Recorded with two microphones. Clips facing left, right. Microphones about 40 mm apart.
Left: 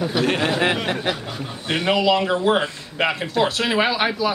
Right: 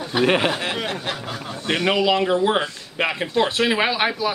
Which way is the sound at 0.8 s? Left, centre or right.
Left.